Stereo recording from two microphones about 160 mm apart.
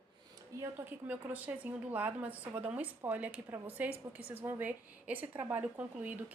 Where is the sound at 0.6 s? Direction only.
15° right (ahead or behind).